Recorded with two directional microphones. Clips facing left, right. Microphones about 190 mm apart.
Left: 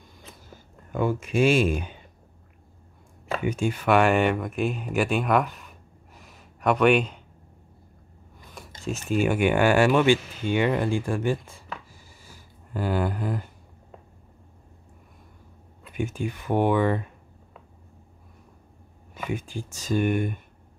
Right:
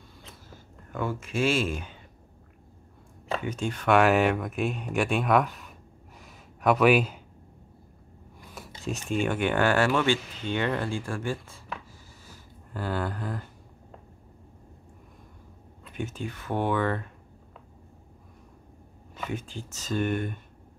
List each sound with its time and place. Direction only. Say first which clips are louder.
0.9 s speech: left 6 dB; 15° left (ahead or behind)
3.3 s speech: left 4 dB; 10° left (ahead or behind)
8.5 s speech: left 2 dB; centre (ahead or behind); by 13.5 s 15° left (ahead or behind)
15.8 s speech: left 5 dB; 10° left (ahead or behind)
19.1 s speech: left 3 dB; 10° left (ahead or behind)